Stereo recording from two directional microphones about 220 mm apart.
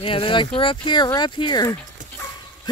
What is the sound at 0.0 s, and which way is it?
Speech, 25° left (ahead or behind).